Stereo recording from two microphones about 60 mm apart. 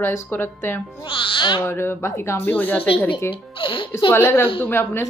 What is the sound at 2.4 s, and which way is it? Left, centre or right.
Speech, left.